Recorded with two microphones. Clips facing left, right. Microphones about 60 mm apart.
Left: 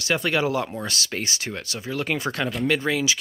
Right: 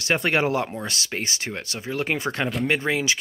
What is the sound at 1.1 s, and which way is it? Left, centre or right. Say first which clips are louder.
Speech: even; right.